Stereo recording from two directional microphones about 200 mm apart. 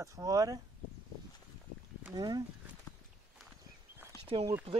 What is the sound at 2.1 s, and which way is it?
Speech, 20° right (ahead or behind).